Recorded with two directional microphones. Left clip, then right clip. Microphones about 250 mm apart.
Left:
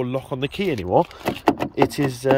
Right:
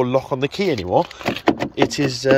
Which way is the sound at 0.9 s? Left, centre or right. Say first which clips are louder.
Left 3 dB; left.